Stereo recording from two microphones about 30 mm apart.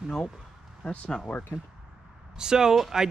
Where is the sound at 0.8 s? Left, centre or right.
Left.